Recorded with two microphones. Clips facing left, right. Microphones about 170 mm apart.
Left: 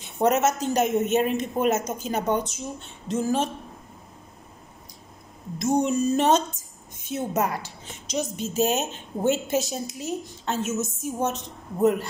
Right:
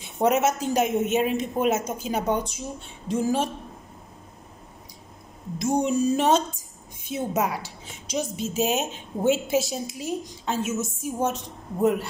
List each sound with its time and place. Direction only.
0.2 s a woman's voice: 10° right (ahead or behind)
5.6 s a woman's voice: 10° right (ahead or behind)
8.2 s a woman's voice: 45° left (ahead or behind)
8.6 s a woman's voice: 10° right (ahead or behind)